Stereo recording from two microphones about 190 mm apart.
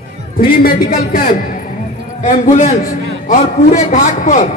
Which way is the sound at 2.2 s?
35° left (ahead or behind).